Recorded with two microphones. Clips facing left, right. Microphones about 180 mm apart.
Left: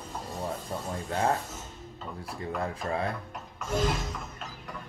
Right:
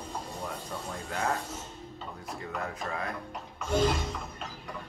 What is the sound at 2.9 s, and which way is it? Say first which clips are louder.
Speech: left 5 dB; 30° left (ahead or behind).